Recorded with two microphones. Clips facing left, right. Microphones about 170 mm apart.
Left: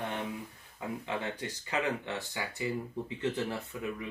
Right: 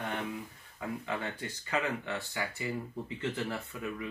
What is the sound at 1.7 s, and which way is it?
Speech, 20° left (ahead or behind).